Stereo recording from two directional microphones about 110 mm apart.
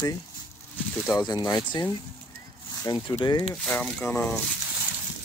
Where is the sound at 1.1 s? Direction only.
35° left (ahead or behind).